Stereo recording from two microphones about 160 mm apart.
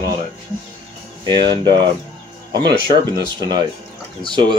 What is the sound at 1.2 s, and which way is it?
Speech, 30° right (ahead or behind).